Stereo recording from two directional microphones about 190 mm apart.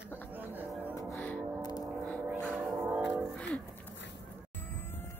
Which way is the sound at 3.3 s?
5° left (ahead or behind).